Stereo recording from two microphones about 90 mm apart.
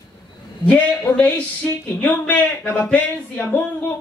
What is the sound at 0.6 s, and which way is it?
Speech, 15° left (ahead or behind).